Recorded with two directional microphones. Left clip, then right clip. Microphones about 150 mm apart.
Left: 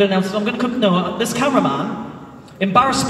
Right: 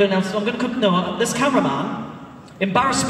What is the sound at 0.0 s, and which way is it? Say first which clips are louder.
A woman's voice: left 2 dB; 30° right (ahead or behind).